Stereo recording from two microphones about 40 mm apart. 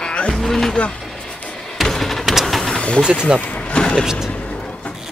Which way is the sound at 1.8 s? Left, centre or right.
Centre.